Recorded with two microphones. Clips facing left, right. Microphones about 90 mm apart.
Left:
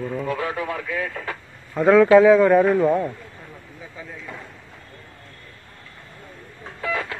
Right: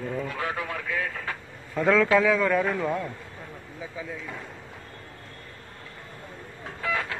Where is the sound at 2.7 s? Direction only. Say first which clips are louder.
Left 9 dB; 10° left (ahead or behind).